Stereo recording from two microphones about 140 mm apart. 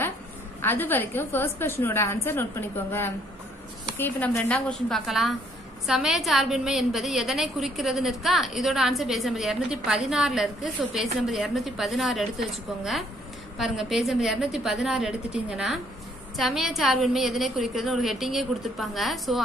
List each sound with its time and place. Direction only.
0.6 s a woman's voice: 15° left (ahead or behind)
4.0 s a woman's voice: 10° left (ahead or behind)
13.6 s a woman's voice: centre (ahead or behind)